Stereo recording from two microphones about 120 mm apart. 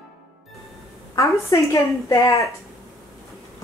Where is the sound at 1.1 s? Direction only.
25° left (ahead or behind).